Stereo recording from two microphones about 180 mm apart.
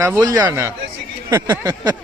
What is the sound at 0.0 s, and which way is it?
Speech, 15° right (ahead or behind).